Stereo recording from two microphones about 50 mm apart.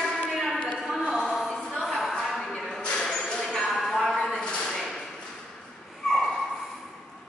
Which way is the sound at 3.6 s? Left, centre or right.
Centre.